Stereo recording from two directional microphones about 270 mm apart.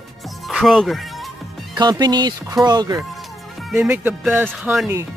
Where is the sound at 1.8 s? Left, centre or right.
Centre.